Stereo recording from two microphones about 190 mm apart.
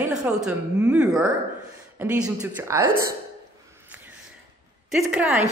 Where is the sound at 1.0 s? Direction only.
15° right (ahead or behind).